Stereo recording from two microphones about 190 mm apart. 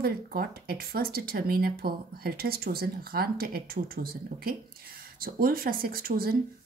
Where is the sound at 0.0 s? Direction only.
50° right (ahead or behind).